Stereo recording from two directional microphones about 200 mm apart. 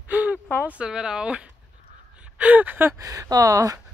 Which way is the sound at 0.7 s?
5° right (ahead or behind).